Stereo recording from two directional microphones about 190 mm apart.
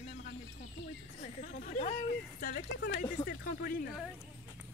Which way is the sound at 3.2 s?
55° left (ahead or behind).